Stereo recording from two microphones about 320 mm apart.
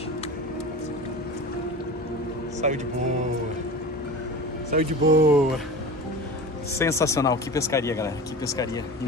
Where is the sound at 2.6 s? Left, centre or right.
Right.